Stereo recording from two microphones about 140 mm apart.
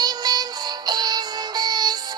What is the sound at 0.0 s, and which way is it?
Synthetic singing, 30° right (ahead or behind).